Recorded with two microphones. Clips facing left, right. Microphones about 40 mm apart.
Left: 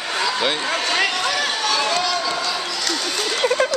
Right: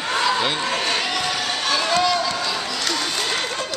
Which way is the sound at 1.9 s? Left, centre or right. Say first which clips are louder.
Right 2 dB; centre.